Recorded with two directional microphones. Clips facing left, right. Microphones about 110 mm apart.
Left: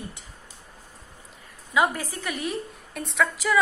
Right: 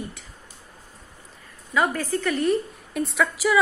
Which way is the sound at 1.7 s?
10° left (ahead or behind).